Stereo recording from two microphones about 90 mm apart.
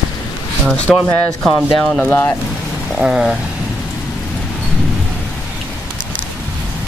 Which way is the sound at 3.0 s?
10° right (ahead or behind).